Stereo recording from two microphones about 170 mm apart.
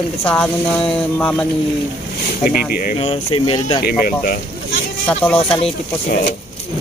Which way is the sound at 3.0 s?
30° left (ahead or behind).